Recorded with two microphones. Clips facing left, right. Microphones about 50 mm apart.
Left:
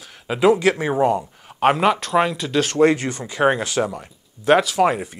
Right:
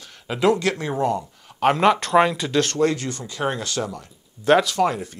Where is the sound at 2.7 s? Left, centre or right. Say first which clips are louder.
Left 5 dB; left.